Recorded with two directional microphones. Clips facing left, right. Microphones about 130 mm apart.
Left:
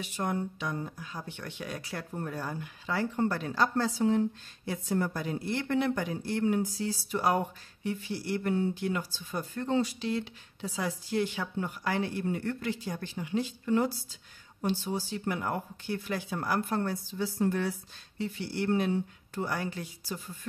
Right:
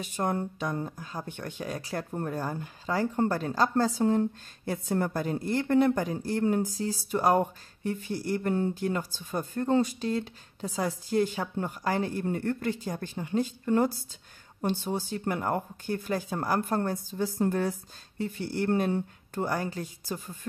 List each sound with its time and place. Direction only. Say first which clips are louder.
0.0 s speech: right 3 dB; 45° right (ahead or behind)